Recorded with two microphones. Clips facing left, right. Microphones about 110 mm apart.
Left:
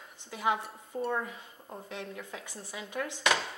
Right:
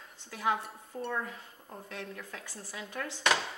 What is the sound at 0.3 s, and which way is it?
A woman's voice, 20° left (ahead or behind).